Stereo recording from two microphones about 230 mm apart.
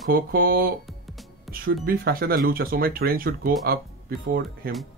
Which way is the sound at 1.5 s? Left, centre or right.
Right.